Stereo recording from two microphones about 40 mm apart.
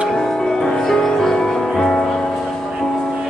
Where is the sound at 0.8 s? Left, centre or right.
Centre.